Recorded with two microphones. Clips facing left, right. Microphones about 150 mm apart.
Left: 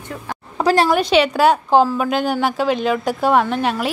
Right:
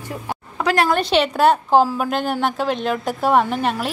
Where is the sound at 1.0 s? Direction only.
Centre (ahead or behind).